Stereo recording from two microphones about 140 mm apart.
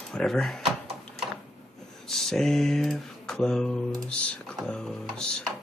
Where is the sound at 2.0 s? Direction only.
Centre (ahead or behind).